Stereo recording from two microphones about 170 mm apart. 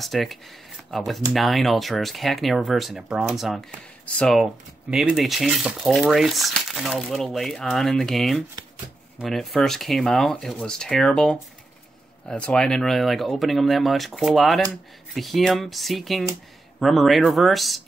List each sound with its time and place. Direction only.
0.0 s speech: centre (ahead or behind)